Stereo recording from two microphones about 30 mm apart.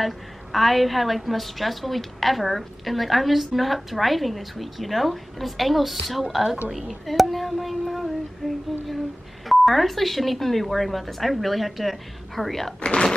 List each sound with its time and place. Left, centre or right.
0.0 s a woman's voice: centre
12.8 s speech: left